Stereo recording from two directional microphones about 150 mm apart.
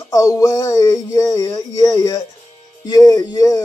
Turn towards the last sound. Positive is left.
turn(degrees=25)  # may be behind; listen again after turning